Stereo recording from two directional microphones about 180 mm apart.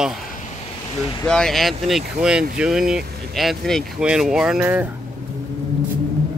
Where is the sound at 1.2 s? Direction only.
5° left (ahead or behind).